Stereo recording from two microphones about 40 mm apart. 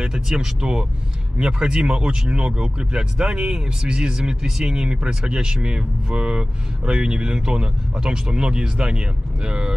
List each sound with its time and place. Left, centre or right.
0.0 s speech: centre